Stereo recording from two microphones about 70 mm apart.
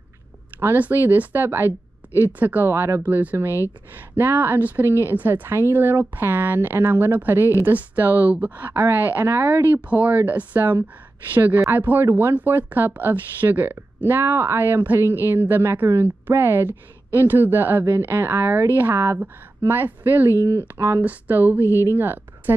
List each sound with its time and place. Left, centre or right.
0.7 s speech: right
3.0 s speech: right
9.8 s speech: right
20.4 s speech: right
21.0 s speech: right